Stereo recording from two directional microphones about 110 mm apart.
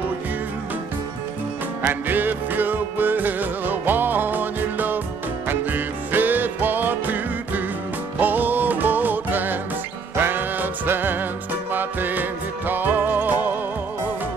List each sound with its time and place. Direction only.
1.8 s music: 20° right (ahead or behind)